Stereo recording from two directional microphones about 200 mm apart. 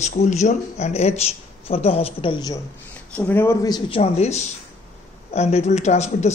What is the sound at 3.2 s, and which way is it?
Speech, 10° left (ahead or behind).